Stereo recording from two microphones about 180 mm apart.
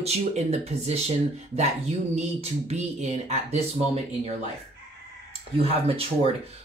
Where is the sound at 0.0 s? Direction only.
35° right (ahead or behind).